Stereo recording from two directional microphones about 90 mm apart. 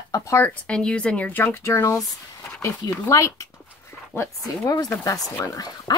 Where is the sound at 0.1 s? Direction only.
35° left (ahead or behind).